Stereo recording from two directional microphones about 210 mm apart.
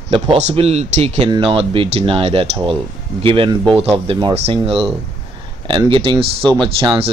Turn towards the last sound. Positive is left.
turn(degrees=-25)  # may be behind; listen again after turning